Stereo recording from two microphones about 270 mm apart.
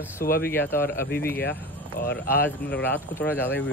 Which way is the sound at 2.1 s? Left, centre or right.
Centre.